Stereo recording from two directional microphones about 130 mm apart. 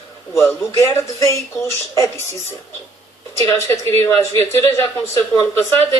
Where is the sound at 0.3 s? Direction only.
20° left (ahead or behind).